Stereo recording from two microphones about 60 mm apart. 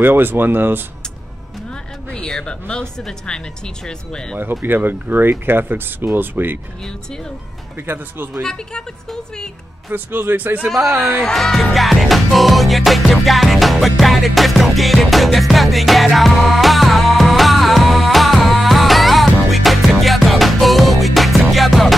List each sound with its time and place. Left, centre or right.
0.0 s speech: right
2.1 s speech: centre
4.6 s speech: right
7.7 s speech: right
8.4 s speech: centre
9.8 s speech: right
10.7 s speech: centre
11.0 s speech: right
11.3 s music: centre